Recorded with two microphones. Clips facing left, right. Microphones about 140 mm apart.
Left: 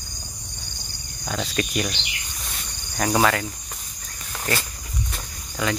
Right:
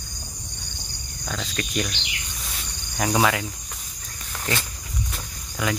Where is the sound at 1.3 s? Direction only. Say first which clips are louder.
Left 4 dB; 10° left (ahead or behind).